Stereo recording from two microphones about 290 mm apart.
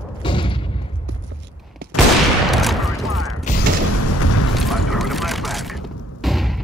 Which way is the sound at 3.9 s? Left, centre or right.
Left.